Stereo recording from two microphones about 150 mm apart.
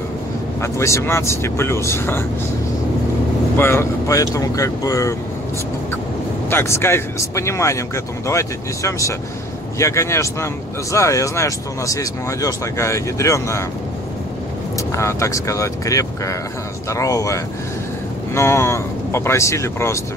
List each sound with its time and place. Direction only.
0.6 s speech: 20° left (ahead or behind)
3.5 s speech: 15° left (ahead or behind)
6.5 s speech: 15° left (ahead or behind)
15.0 s speech: 20° left (ahead or behind)